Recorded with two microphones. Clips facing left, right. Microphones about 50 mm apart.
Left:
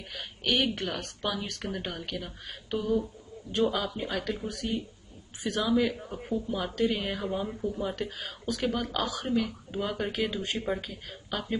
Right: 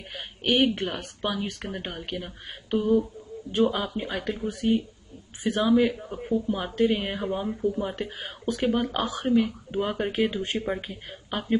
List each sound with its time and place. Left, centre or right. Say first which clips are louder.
0.1 s a woman's voice: right 4 dB; right
5.9 s speech: right 4 dB; centre
6.3 s a woman's voice: right 4 dB; right
7.2 s speech: right 4 dB; centre
8.2 s a woman's voice: right 7 dB; right